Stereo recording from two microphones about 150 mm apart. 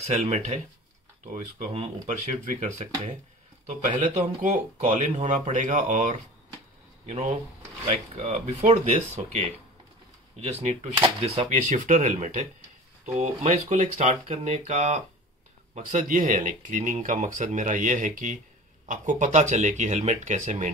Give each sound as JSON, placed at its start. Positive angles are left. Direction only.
{"t": 0.0, "sound": "speech", "side_deg": -45}
{"t": 1.2, "sound": "speech", "side_deg": -60}